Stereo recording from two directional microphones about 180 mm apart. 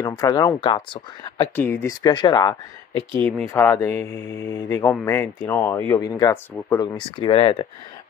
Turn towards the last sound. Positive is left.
turn(degrees=25)  # may be behind; listen again after turning